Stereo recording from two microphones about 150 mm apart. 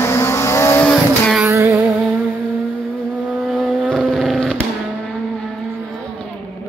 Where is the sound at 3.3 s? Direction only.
Centre (ahead or behind).